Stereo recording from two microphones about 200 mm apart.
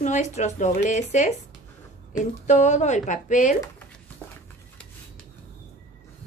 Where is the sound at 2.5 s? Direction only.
35° left (ahead or behind).